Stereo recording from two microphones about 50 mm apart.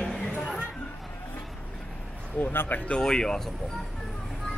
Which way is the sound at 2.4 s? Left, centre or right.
Left.